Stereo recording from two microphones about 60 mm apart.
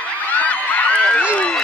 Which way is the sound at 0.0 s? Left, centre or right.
Left.